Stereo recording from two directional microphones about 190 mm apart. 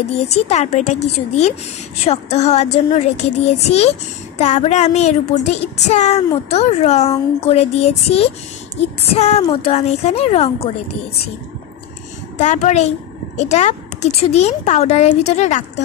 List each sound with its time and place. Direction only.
0.3 s speech: 35° left (ahead or behind)
12.4 s speech: 40° left (ahead or behind)